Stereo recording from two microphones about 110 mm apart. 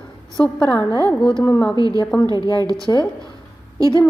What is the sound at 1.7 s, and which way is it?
Speech, 35° right (ahead or behind).